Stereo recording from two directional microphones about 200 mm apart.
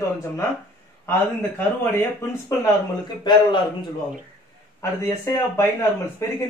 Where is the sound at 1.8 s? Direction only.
10° left (ahead or behind).